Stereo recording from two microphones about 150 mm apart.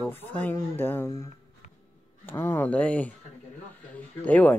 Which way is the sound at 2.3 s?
15° left (ahead or behind).